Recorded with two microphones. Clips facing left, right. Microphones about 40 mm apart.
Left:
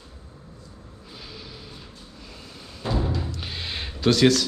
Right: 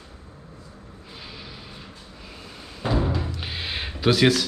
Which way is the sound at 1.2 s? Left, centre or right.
Centre.